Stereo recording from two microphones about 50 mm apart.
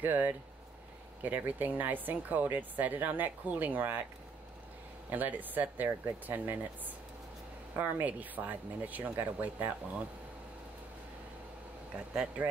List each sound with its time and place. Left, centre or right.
0.0 s speech: right
5.1 s speech: right
7.7 s speech: right